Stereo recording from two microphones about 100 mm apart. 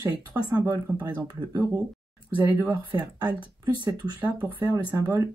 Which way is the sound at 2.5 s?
15° right (ahead or behind).